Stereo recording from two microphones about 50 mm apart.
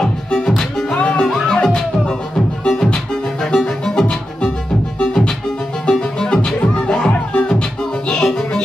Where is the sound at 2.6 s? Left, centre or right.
Centre.